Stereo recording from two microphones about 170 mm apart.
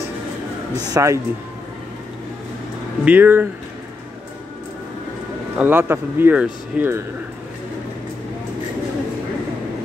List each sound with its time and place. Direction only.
0.8 s a man's voice: 20° right (ahead or behind)
3.1 s speech: 10° right (ahead or behind)
5.6 s speech: 10° right (ahead or behind)